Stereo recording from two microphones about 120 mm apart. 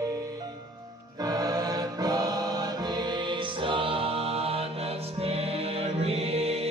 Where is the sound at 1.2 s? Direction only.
35° right (ahead or behind).